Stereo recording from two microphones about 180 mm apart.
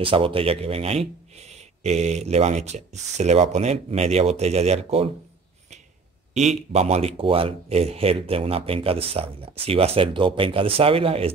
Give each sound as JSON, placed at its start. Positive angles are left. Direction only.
{"t": 0.0, "sound": "speech", "side_deg": -30}
{"t": 6.7, "sound": "speech", "side_deg": -35}